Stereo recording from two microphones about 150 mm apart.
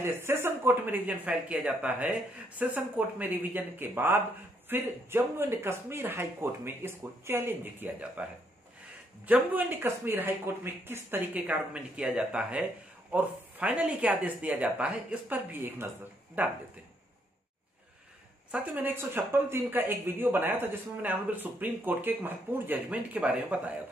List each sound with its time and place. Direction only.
0.0 s speech: 15° right (ahead or behind)
18.5 s speech: 10° right (ahead or behind)